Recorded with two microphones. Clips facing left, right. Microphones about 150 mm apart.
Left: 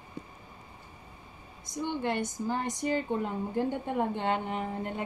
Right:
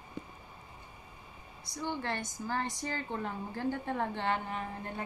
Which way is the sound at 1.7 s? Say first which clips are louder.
Left 5 dB; 20° left (ahead or behind).